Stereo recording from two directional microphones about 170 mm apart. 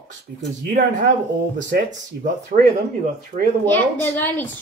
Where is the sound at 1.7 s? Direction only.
50° right (ahead or behind).